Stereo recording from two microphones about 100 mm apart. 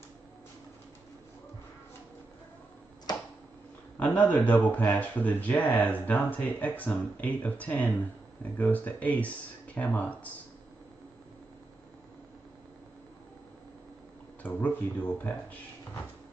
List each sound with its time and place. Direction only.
4.0 s speech: 15° left (ahead or behind)
14.4 s speech: 15° left (ahead or behind)